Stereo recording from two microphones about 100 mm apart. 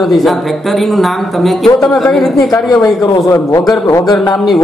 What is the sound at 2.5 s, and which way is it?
A man's voice, 35° left (ahead or behind).